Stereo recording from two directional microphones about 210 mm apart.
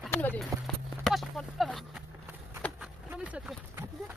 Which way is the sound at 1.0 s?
Centre (ahead or behind).